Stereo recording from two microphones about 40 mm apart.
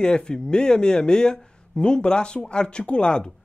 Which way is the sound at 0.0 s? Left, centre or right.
Left.